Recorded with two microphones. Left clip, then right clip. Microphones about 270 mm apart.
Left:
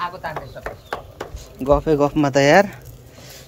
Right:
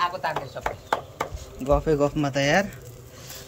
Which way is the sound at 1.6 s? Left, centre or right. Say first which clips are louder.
Left 5 dB; centre.